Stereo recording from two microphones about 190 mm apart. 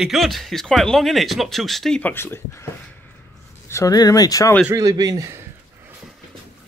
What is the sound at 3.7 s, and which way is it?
Speech, 15° left (ahead or behind).